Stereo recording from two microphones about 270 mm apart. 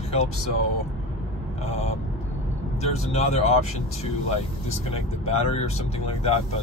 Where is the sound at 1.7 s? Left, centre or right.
Left.